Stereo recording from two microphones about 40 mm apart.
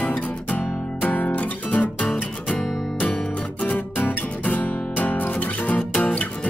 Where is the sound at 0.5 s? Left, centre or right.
Left.